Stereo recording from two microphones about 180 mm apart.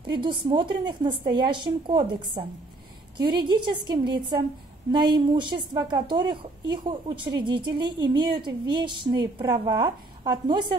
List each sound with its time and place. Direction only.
0.1 s a woman's voice: 25° right (ahead or behind)
3.4 s a woman's voice: 25° right (ahead or behind)